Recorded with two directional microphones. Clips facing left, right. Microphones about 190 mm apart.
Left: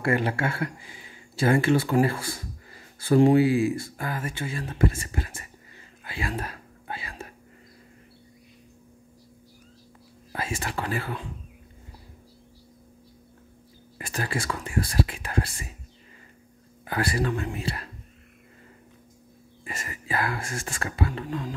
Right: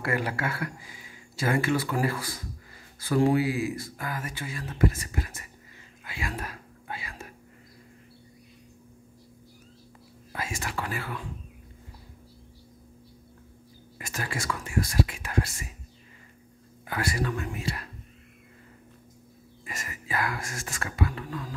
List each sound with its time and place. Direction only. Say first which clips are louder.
0.0 s speech: left 4 dB; 25° left (ahead or behind)
6.0 s whispering: left 3 dB; 30° left (ahead or behind)
10.3 s speech: left 3 dB; 30° left (ahead or behind)
13.9 s speech: left 4 dB; 30° left (ahead or behind)
16.8 s speech: left 3 dB; 35° left (ahead or behind)
19.6 s speech: left 3 dB; 30° left (ahead or behind)